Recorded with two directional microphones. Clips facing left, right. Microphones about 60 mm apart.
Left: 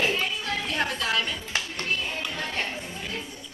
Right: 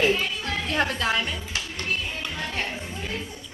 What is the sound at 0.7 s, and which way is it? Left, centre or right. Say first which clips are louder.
Music: right 5 dB; right.